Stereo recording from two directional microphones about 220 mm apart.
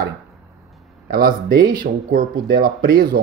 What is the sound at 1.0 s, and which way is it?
Speech, 40° right (ahead or behind).